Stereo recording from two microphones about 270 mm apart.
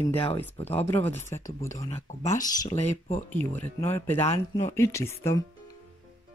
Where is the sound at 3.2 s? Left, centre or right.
Centre.